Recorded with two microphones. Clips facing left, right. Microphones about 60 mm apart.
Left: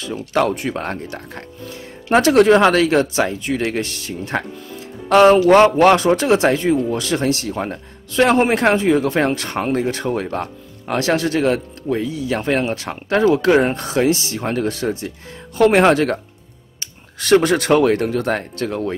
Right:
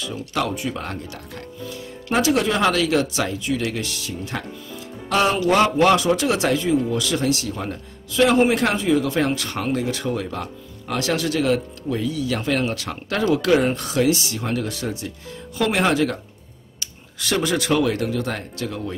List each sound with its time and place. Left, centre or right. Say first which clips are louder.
0.0 s speech: left 6 dB; left
17.2 s speech: left 8 dB; left